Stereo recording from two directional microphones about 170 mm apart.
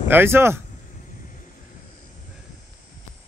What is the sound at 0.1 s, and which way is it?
Speech, 15° right (ahead or behind).